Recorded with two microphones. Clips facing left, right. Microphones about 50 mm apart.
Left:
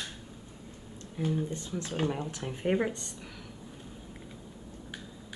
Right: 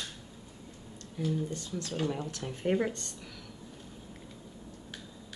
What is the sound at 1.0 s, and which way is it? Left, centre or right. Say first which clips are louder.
Speech: left 1 dB; left.